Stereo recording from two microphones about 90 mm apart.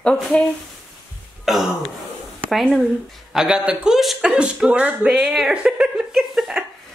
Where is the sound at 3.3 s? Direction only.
10° right (ahead or behind).